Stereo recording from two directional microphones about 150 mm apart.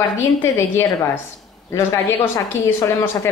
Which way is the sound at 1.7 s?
15° left (ahead or behind).